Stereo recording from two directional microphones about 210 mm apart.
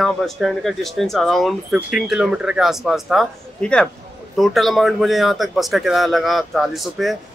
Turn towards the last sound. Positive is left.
turn(degrees=0)  # may be behind; listen again after turning